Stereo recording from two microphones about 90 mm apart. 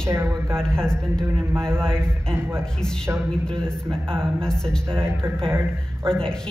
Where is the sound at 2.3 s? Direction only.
25° right (ahead or behind).